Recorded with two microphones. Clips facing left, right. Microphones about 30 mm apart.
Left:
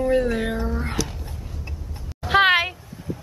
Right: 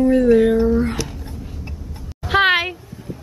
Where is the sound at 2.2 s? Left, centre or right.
Centre.